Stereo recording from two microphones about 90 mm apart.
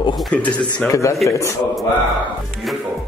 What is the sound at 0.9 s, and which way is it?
Speech, 35° left (ahead or behind).